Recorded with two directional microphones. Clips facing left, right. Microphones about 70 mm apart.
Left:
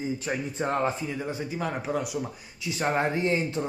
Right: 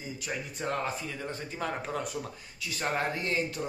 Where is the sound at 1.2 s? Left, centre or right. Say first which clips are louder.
Left 3 dB; centre.